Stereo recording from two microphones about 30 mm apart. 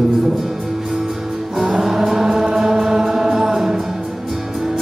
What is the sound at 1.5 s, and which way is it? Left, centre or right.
Music, centre.